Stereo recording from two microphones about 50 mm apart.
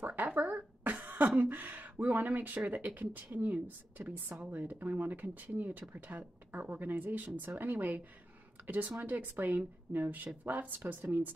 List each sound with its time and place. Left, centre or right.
0.0 s throat clearing: right
2.7 s speech: right
10.8 s speech: right